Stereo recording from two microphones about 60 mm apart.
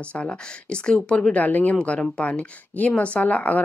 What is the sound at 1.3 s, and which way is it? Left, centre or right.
Speech, left.